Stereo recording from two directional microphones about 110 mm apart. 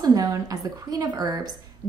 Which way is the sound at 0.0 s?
35° right (ahead or behind).